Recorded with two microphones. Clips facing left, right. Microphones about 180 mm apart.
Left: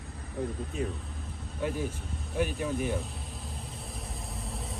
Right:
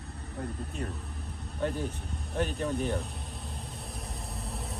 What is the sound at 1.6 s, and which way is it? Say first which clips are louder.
Speech: even; 10° left (ahead or behind).